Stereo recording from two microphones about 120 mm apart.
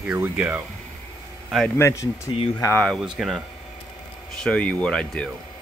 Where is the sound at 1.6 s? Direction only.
20° left (ahead or behind).